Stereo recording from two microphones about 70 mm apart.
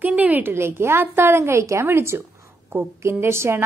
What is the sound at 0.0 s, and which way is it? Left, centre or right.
A woman's voice, right.